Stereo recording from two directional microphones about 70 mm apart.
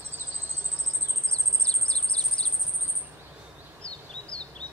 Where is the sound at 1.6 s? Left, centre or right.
Centre.